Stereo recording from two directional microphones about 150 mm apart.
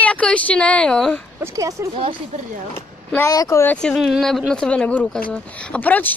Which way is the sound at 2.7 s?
15° left (ahead or behind).